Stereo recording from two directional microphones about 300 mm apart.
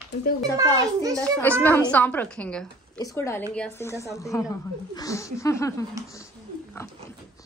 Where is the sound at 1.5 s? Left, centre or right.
Centre.